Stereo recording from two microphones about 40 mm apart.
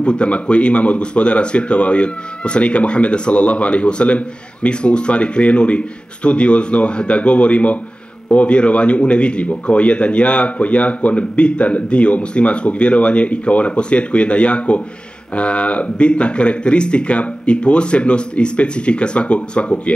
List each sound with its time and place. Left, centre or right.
0.0 s speech: left